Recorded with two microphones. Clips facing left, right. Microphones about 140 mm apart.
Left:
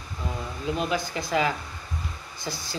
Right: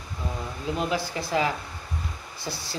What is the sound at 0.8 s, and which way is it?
Speech, 25° right (ahead or behind).